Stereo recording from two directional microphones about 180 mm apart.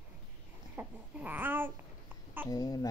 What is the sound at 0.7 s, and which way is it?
Babbling, 10° right (ahead or behind).